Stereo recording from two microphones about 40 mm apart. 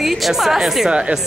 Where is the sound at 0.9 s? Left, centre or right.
Right.